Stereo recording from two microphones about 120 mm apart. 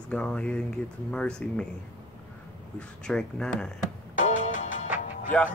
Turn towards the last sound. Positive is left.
turn(degrees=10)  # may be behind; listen again after turning